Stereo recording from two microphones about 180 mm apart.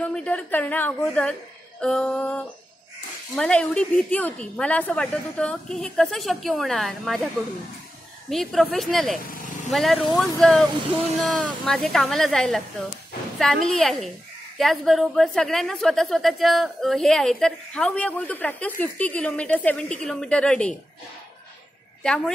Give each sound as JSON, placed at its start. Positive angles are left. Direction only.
{"t": 0.0, "sound": "a woman's voice", "side_deg": 5}
{"t": 8.3, "sound": "a woman's voice", "side_deg": 0}
{"t": 9.3, "sound": "vehicle", "side_deg": 45}
{"t": 9.7, "sound": "a woman's voice", "side_deg": 0}
{"t": 22.0, "sound": "a woman's voice", "side_deg": 5}